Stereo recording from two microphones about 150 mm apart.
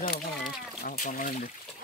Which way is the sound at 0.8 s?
65° left (ahead or behind).